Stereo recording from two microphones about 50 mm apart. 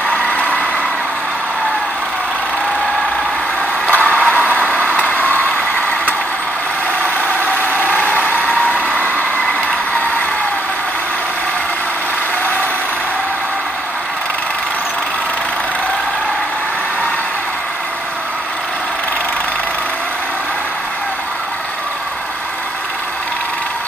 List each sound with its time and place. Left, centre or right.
0.2 s vehicle: left
3.8 s vehicle: left
7.6 s vehicle: left
8.4 s vehicle: left